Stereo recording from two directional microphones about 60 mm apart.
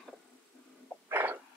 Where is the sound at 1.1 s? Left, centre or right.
Right.